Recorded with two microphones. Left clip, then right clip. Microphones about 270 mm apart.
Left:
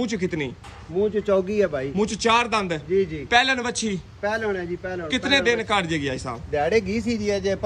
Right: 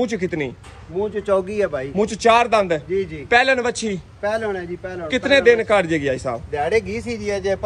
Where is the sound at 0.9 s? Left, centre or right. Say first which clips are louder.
Right 1 dB; right.